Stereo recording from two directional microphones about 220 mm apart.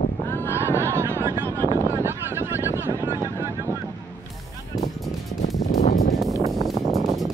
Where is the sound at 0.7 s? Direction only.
10° right (ahead or behind).